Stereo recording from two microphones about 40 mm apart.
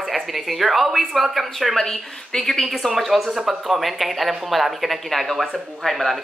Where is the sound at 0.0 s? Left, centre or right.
Centre.